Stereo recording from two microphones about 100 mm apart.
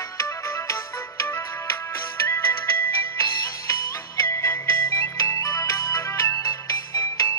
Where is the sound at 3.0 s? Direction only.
30° left (ahead or behind).